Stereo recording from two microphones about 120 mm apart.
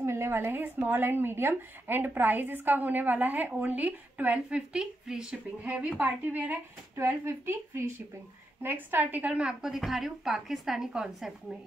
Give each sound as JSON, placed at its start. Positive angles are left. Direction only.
{"t": 0.0, "sound": "a woman's voice", "side_deg": -25}